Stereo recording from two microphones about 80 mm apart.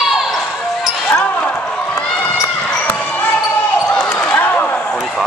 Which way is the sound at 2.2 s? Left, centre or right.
Left.